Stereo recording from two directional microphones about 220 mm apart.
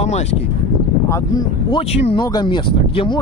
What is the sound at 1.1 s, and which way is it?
Speech, 15° left (ahead or behind).